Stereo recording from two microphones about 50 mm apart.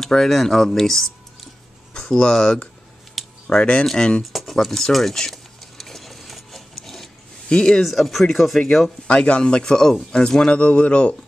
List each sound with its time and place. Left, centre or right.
0.0 s speech: centre
2.3 s speech: centre
3.8 s speech: centre
4.2 s a sound: centre
6.8 s wood: centre
7.4 s speech: centre
7.8 s speech: centre
9.0 s speech: left